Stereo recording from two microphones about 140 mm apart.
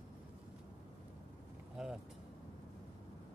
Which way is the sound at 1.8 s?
5° right (ahead or behind).